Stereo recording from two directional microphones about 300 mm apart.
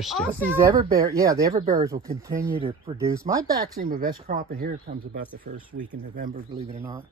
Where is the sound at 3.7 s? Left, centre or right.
Right.